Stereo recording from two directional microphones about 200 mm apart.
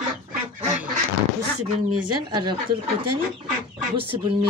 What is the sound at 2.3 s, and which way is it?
Speech, 25° right (ahead or behind).